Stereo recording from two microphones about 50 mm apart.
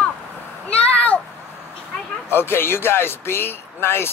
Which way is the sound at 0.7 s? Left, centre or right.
Left.